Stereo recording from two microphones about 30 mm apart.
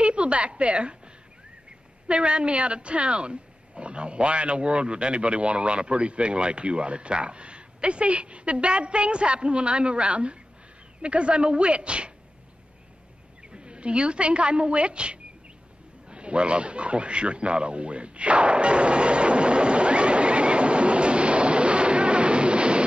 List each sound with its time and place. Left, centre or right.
0.0 s a woman's voice: right
13.4 s a woman's voice: right
16.1 s a sound: right